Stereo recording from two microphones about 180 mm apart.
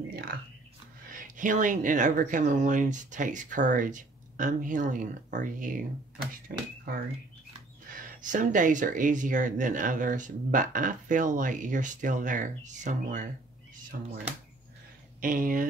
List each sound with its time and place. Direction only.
0.1 s whispering: 55° right (ahead or behind)
1.1 s speech: 45° right (ahead or behind)
7.9 s speech: 50° right (ahead or behind)
13.9 s speech: 55° right (ahead or behind)
15.1 s speech: 50° right (ahead or behind)